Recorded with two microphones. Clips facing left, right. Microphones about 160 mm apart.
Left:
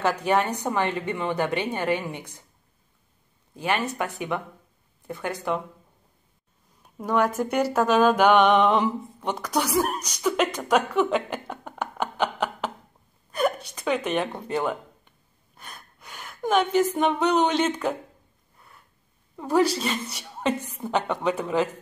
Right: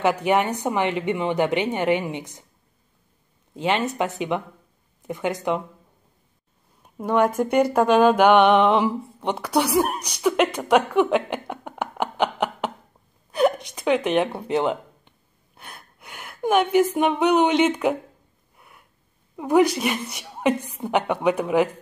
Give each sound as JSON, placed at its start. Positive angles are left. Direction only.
{"t": 0.0, "sound": "speech", "side_deg": -15}
{"t": 3.5, "sound": "speech", "side_deg": -20}
{"t": 6.8, "sound": "speech", "side_deg": -10}
{"t": 11.3, "sound": "a sound", "side_deg": -10}
{"t": 13.3, "sound": "speech", "side_deg": -10}
{"t": 15.5, "sound": "a sound", "side_deg": -10}
{"t": 19.3, "sound": "speech", "side_deg": -15}